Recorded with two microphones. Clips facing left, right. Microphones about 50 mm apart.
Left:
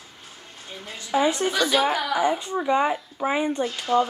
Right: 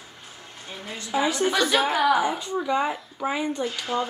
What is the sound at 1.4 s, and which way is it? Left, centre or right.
Speech, right.